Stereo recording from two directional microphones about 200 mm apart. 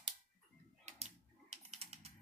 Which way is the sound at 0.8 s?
35° right (ahead or behind).